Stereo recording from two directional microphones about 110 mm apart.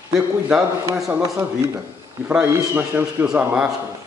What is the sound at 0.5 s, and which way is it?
Speech, 30° right (ahead or behind).